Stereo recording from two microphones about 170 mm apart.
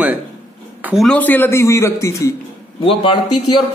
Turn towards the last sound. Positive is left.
turn(degrees=30)  # may be behind; listen again after turning